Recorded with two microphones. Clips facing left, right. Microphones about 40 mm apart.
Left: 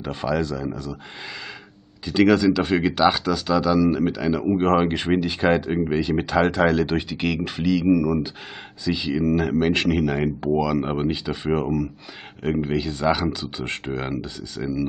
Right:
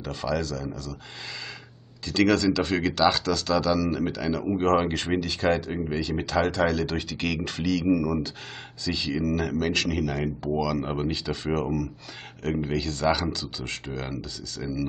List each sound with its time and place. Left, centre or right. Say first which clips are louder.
0.0 s speech: left 4 dB; left
2.0 s speech: left 5 dB; centre